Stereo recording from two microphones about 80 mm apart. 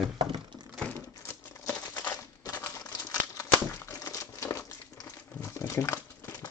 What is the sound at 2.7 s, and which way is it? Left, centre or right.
Crumpling, left.